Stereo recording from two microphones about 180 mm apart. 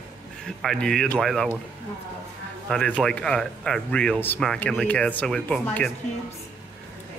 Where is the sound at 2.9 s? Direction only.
5° left (ahead or behind).